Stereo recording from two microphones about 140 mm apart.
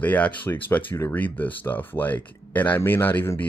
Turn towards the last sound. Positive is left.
turn(degrees=15)  # may be behind; listen again after turning